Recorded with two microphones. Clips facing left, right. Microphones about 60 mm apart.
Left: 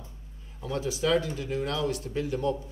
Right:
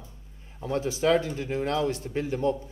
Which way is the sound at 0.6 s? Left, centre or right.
Right.